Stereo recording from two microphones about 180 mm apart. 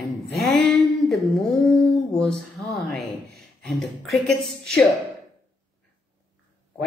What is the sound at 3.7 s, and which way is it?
Speech, centre (ahead or behind).